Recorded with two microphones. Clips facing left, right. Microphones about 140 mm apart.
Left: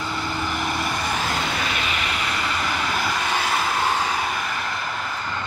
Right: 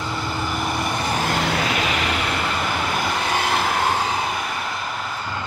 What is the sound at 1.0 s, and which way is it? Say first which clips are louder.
Vehicle: right 3 dB; 35° right (ahead or behind).